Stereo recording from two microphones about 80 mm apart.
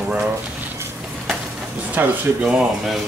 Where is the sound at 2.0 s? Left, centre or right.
Right.